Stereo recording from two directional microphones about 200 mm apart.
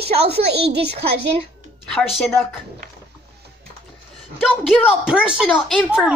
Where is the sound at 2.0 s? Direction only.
Centre (ahead or behind).